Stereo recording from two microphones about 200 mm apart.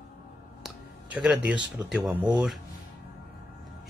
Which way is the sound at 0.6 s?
5° right (ahead or behind).